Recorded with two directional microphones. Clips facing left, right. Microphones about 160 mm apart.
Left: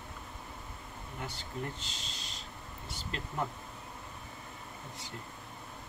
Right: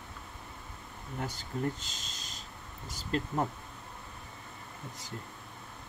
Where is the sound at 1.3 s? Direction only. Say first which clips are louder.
Right 6 dB; 45° right (ahead or behind).